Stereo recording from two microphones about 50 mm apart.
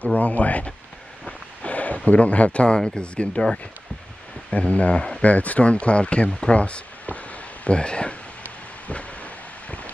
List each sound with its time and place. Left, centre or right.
0.2 s speech: left
5.2 s speech: left
8.8 s a sound: left